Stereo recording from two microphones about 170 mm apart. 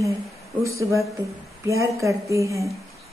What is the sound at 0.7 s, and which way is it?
Speech, 20° right (ahead or behind).